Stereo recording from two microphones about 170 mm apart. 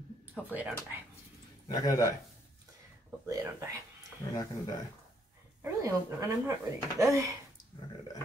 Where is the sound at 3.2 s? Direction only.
20° right (ahead or behind).